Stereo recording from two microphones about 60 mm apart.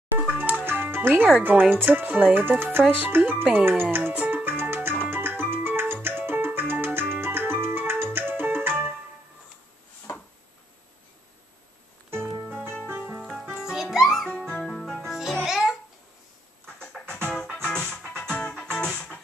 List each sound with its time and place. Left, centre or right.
0.3 s music: right
1.4 s speech: right
4.3 s music: right
12.4 s music: right
13.6 s music: centre
14.2 s music: centre
14.9 s music: centre
15.4 s babbling: centre
17.3 s music: centre